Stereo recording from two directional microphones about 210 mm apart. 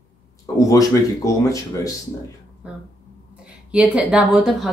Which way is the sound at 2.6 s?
5° right (ahead or behind).